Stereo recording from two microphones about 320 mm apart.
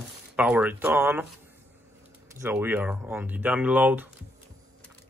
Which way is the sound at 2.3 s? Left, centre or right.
Centre.